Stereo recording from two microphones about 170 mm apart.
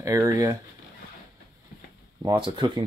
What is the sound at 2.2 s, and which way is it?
Speech, 20° right (ahead or behind).